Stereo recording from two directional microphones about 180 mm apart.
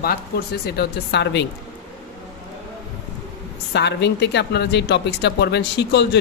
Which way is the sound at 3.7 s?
70° left (ahead or behind).